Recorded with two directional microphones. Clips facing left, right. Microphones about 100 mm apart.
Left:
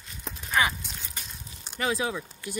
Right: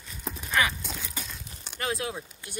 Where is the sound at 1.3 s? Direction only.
60° right (ahead or behind).